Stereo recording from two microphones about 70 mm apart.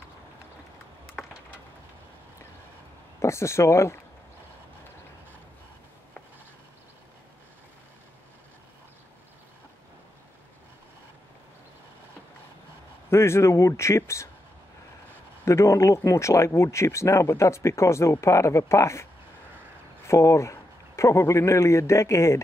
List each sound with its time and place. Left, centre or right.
3.2 s speech: left
13.1 s speech: left
15.4 s speech: left
20.1 s a man's voice: left